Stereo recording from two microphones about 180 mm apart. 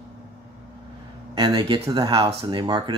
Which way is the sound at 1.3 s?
30° right (ahead or behind).